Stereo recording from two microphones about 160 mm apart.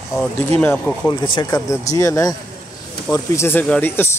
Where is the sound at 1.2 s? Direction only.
25° left (ahead or behind).